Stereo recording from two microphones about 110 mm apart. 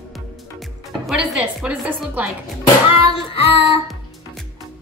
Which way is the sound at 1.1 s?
5° right (ahead or behind).